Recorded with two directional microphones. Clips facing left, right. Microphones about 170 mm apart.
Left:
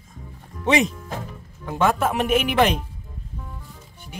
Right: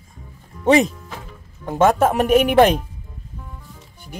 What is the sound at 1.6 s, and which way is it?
Speech, 45° right (ahead or behind).